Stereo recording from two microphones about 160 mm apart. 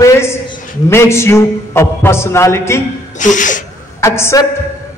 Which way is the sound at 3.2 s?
50° left (ahead or behind).